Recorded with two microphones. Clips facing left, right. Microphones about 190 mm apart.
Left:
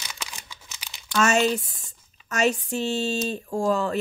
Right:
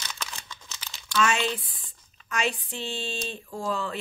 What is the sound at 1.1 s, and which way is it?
Speech, 45° left (ahead or behind).